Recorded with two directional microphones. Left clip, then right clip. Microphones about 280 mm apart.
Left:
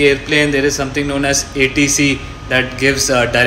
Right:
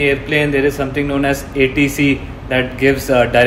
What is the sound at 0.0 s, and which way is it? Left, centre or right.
A man's voice, centre.